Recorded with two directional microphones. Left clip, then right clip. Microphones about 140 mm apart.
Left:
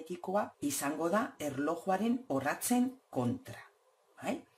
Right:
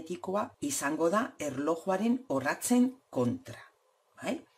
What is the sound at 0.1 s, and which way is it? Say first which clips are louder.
Speech: right 1 dB; 30° right (ahead or behind).